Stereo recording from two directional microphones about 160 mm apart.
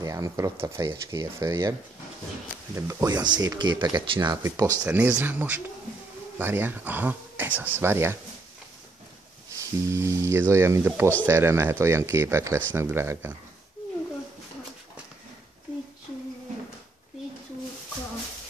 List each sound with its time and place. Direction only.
0.0 s speech: 20° right (ahead or behind)
4.4 s speech: 20° right (ahead or behind)
4.8 s speech: 10° right (ahead or behind)
9.9 s speech: 20° right (ahead or behind)